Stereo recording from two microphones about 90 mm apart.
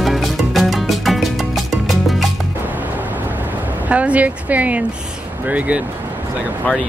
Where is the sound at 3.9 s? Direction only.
15° right (ahead or behind).